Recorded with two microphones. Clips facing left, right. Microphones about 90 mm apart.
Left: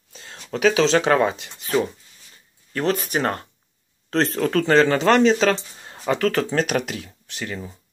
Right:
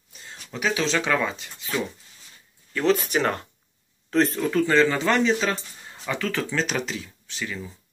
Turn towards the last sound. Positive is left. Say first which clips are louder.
# left 2 dB
turn(degrees=55)  # may be behind; listen again after turning